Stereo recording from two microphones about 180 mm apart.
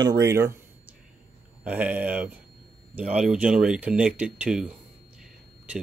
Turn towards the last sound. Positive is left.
turn(degrees=-5)  # may be behind; listen again after turning